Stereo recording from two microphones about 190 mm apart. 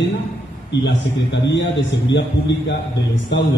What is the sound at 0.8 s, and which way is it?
Speech, 70° left (ahead or behind).